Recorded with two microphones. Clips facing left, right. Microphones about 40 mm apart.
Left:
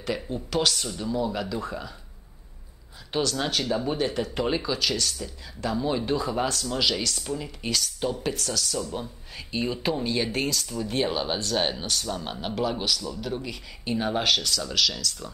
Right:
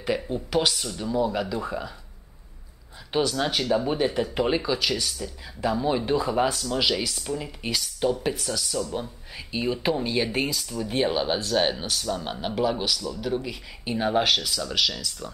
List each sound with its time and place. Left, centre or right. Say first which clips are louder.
0.0 s speech: right 3 dB; centre
3.1 s speech: right 2 dB; centre